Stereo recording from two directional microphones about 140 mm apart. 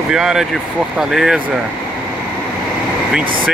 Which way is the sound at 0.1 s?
5° right (ahead or behind).